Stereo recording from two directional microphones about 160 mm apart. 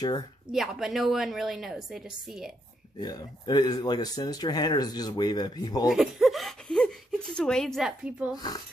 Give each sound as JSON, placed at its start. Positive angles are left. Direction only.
{"t": 0.5, "sound": "a woman's voice", "side_deg": 0}
{"t": 3.0, "sound": "speech", "side_deg": 25}
{"t": 5.9, "sound": "a woman's voice", "side_deg": -5}
{"t": 8.4, "sound": "speech", "side_deg": 25}